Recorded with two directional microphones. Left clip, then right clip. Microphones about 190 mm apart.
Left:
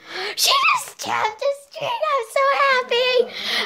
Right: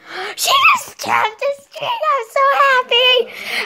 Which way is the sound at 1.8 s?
Centre (ahead or behind).